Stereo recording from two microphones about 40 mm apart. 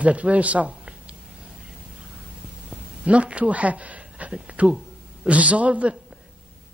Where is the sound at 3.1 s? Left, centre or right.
Right.